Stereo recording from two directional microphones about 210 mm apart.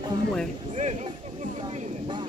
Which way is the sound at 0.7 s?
35° right (ahead or behind).